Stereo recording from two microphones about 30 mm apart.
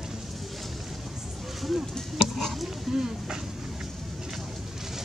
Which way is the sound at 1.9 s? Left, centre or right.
Centre.